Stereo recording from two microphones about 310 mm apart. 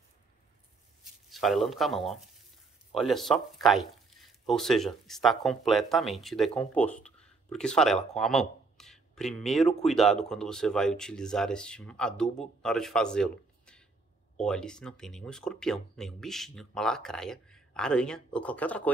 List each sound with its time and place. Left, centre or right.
1.3 s speech: centre